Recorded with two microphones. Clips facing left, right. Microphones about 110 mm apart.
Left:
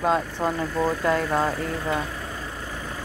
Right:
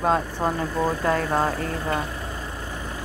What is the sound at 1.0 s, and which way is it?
Speech, 40° right (ahead or behind).